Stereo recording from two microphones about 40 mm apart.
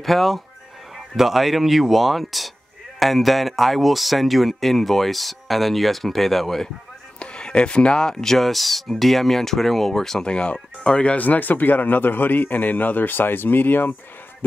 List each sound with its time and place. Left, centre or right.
0.0 s speech: centre
7.2 s speech: left
10.2 s speech: left
11.1 s a man's voice: left